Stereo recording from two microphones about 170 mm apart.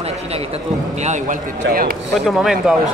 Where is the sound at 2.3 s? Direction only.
Centre (ahead or behind).